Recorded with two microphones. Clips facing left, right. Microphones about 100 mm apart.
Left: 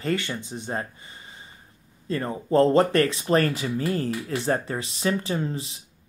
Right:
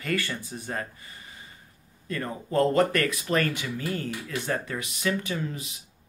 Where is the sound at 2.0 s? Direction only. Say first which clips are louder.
Left 4 dB; 30° left (ahead or behind).